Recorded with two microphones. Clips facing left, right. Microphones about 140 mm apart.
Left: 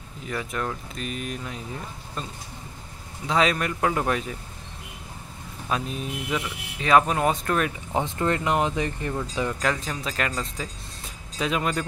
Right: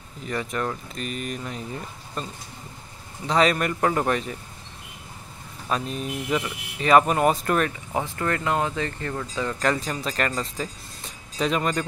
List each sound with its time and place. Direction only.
0.3 s speech: centre (ahead or behind)
5.7 s speech: centre (ahead or behind)
7.9 s speech: 20° left (ahead or behind)
9.6 s speech: centre (ahead or behind)